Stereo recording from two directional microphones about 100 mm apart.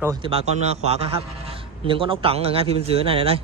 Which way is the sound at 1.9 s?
60° right (ahead or behind).